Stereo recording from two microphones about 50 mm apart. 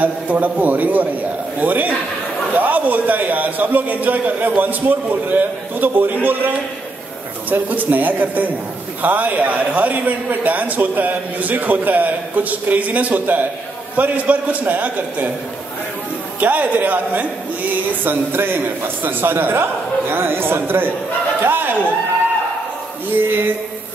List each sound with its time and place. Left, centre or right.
0.0 s a man's voice: right
16.3 s a man's voice: right
23.1 s a man's voice: right